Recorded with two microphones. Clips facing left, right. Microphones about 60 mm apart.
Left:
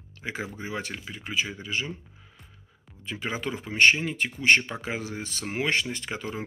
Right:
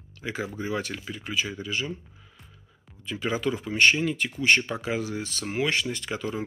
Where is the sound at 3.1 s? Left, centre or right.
Left.